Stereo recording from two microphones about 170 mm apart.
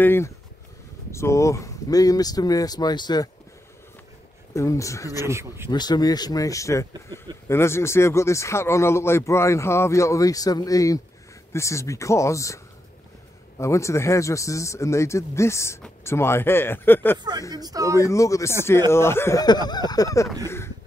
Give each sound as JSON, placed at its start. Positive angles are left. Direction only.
{"t": 0.0, "sound": "a man's voice", "side_deg": 15}
{"t": 4.6, "sound": "speech", "side_deg": 20}
{"t": 5.3, "sound": "speech", "side_deg": -15}
{"t": 5.7, "sound": "a man's voice", "side_deg": 25}
{"t": 13.6, "sound": "a man's voice", "side_deg": 15}
{"t": 17.6, "sound": "a man's voice", "side_deg": -20}
{"t": 18.0, "sound": "a man's voice", "side_deg": 20}